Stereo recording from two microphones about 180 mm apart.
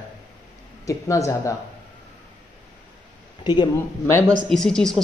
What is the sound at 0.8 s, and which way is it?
Speech, 15° left (ahead or behind).